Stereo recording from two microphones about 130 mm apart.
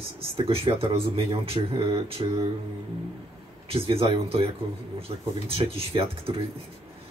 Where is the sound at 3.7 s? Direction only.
45° right (ahead or behind).